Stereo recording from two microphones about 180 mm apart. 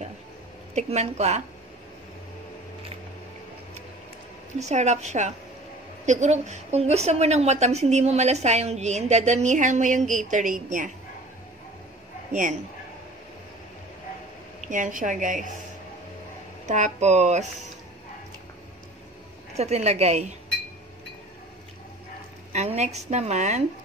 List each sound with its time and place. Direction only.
0.7 s a woman's voice: 40° right (ahead or behind)
4.6 s a woman's voice: 40° right (ahead or behind)
12.3 s speech: 45° right (ahead or behind)
14.7 s a woman's voice: 45° right (ahead or behind)
16.6 s a woman's voice: 40° right (ahead or behind)
19.5 s a woman's voice: 35° right (ahead or behind)
22.5 s a woman's voice: 40° right (ahead or behind)